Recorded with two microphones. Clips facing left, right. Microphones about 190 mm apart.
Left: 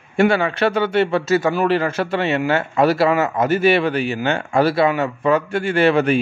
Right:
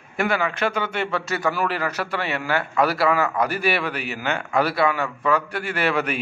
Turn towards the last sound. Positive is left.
turn(degrees=25)  # may be behind; listen again after turning